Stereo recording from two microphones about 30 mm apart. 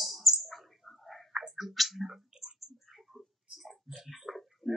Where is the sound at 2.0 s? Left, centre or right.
Right.